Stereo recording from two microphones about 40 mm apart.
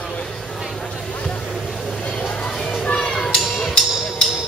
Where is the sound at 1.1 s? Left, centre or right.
Left.